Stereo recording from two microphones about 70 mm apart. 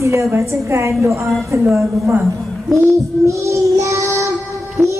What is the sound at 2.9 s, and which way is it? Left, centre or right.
Child singing, right.